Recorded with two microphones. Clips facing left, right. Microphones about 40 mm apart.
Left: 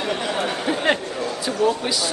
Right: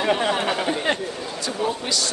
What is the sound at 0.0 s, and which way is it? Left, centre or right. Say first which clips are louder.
Speech: right 3 dB; right.